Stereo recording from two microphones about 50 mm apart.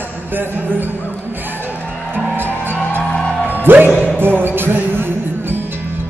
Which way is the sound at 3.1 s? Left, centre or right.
Left.